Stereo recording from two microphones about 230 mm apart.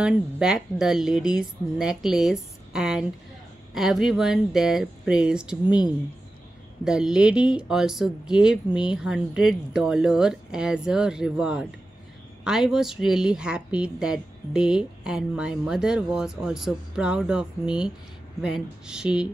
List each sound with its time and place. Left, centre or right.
0.0 s a woman's voice: centre
6.8 s a woman's voice: centre